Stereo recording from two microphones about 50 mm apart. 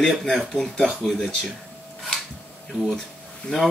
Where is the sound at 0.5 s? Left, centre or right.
Centre.